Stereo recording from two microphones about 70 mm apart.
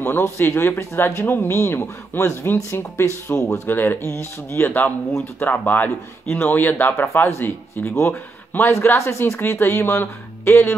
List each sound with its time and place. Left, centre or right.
0.0 s speech: left
3.6 s speech: left